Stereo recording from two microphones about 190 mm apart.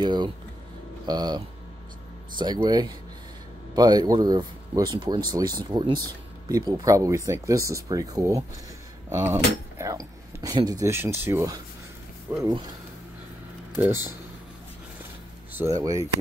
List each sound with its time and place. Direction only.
0.0 s speech: 25° right (ahead or behind)
15.5 s speech: 15° right (ahead or behind)